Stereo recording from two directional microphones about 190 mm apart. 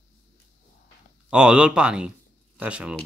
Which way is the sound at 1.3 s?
5° right (ahead or behind).